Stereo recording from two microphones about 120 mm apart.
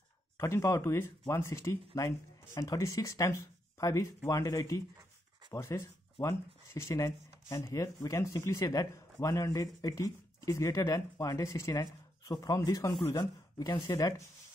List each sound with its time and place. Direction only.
0.4 s speech: 25° left (ahead or behind)